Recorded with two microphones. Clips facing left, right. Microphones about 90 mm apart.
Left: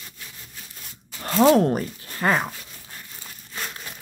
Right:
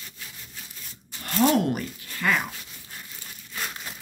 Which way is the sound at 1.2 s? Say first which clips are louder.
Left 5 dB; 30° left (ahead or behind).